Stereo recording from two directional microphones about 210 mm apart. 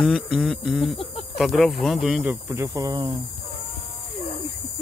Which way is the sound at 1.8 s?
Centre (ahead or behind).